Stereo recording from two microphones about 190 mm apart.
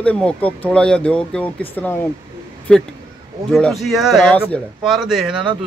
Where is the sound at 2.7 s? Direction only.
5° left (ahead or behind).